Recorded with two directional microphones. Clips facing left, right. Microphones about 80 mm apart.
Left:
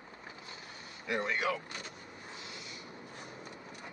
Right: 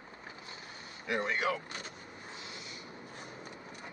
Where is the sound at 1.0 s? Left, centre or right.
Right.